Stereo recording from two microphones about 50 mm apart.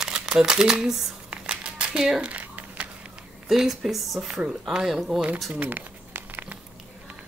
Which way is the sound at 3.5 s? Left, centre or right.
Centre.